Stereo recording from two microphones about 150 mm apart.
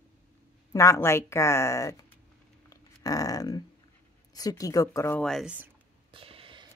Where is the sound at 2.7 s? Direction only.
25° left (ahead or behind).